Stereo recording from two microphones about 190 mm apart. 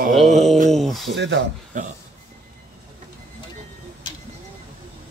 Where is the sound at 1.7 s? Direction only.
45° right (ahead or behind).